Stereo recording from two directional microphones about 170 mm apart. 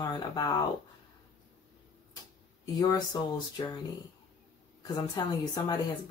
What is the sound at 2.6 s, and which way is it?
Speech, 25° left (ahead or behind).